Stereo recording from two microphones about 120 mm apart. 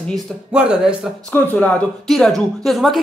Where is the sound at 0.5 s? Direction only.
10° right (ahead or behind).